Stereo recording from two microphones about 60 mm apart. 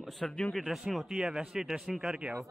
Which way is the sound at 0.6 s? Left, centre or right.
Centre.